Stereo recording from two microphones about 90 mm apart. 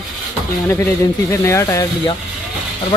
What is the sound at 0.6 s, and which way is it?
Speech, 30° left (ahead or behind).